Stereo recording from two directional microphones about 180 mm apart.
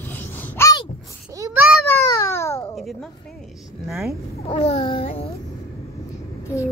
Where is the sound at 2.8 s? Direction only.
Centre (ahead or behind).